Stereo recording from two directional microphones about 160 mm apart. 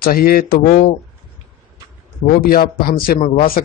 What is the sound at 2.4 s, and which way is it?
Speech, 65° left (ahead or behind).